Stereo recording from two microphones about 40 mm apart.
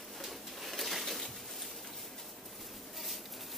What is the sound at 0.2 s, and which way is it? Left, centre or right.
Pigeon, centre.